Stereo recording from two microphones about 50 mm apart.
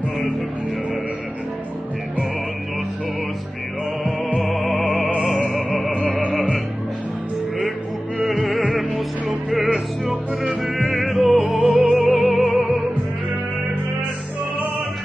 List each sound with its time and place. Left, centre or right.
4.4 s music: centre
8.2 s music: centre
9.7 s music: centre
10.6 s music: centre